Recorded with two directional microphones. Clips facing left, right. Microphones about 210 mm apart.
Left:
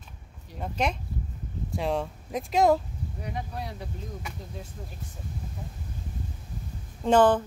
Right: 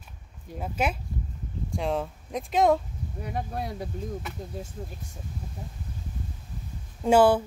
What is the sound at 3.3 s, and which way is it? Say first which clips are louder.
Speech: right 5 dB; 50° right (ahead or behind).